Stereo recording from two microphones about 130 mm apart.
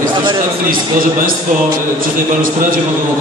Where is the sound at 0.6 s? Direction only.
90° right.